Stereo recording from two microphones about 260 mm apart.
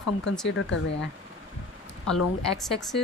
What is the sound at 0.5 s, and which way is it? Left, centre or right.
Speech, left.